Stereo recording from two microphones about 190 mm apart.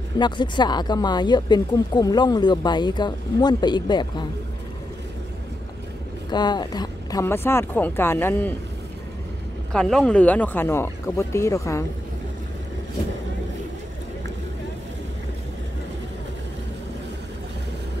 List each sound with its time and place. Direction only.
0.2 s speech: 25° left (ahead or behind)
6.3 s speech: 20° left (ahead or behind)
9.7 s speech: 5° left (ahead or behind)